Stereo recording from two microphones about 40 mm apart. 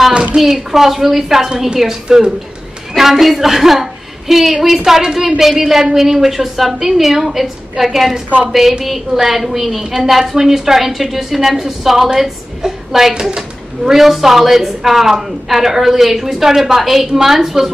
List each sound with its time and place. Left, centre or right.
0.1 s speech: right
0.4 s a woman's voice: centre
2.0 s speech: centre
3.0 s a woman's voice: centre
13.1 s speech: centre
13.8 s a woman's voice: centre